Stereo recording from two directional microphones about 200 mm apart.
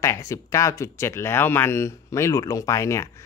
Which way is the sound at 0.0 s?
15° left (ahead or behind).